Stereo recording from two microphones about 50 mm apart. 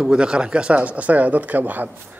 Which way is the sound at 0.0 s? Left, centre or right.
Centre.